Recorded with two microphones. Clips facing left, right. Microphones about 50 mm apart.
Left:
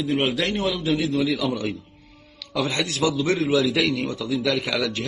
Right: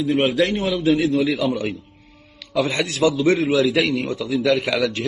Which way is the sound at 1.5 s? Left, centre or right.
Right.